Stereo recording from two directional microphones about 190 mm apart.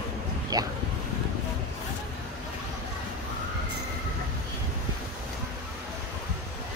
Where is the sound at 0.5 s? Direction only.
20° right (ahead or behind).